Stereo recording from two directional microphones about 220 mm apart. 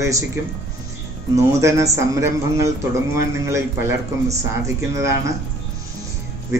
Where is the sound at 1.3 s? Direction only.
15° right (ahead or behind).